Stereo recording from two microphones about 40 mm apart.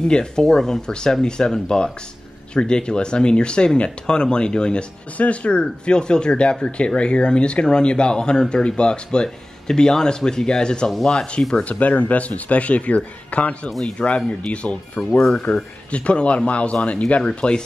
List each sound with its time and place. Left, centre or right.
0.1 s speech: centre
5.1 s speech: left
11.6 s speech: left